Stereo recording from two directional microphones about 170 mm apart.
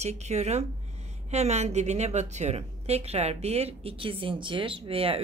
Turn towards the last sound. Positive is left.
turn(degrees=-35)  # may be behind; listen again after turning